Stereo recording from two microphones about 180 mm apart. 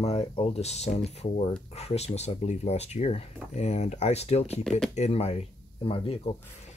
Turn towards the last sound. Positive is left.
turn(degrees=30)  # may be behind; listen again after turning